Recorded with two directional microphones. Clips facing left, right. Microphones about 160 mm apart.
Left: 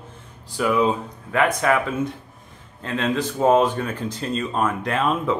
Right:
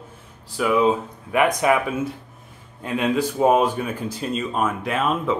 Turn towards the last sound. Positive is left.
turn(degrees=0)  # may be behind; listen again after turning